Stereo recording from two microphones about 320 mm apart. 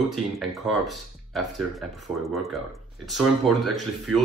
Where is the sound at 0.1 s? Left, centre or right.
Centre.